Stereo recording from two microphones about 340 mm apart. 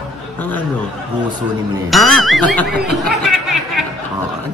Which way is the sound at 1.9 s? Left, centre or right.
Centre.